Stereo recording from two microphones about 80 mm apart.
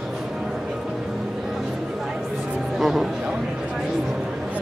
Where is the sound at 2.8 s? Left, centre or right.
Centre.